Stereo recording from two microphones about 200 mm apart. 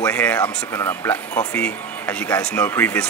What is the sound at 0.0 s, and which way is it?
Speech, 5° left (ahead or behind).